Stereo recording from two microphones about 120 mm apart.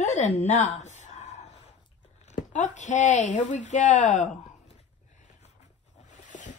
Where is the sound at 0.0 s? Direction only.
80° left.